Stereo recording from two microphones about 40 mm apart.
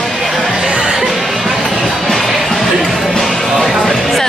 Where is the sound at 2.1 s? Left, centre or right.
Centre.